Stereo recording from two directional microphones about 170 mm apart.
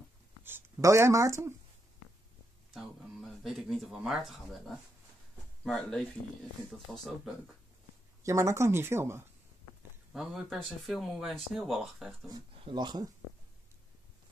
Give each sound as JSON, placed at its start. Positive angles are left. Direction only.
{"t": 0.4, "sound": "speech", "side_deg": -10}
{"t": 2.7, "sound": "speech", "side_deg": 0}
{"t": 8.2, "sound": "speech", "side_deg": -15}
{"t": 10.1, "sound": "speech", "side_deg": 0}
{"t": 12.3, "sound": "speech", "side_deg": -30}